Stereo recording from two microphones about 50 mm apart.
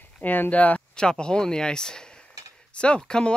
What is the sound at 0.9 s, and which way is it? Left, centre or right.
Speech, centre.